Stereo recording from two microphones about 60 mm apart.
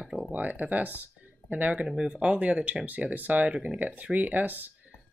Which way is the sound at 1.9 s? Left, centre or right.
Centre.